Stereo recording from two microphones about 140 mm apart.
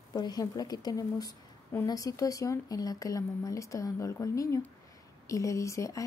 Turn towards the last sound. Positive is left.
turn(degrees=20)  # may be behind; listen again after turning